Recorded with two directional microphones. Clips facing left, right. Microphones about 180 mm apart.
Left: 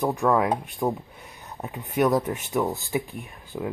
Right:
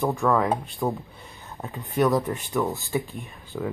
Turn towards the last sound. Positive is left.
turn(degrees=15)  # may be behind; listen again after turning